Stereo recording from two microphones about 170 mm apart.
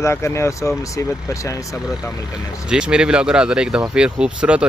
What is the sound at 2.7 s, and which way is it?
Speech, 5° right (ahead or behind).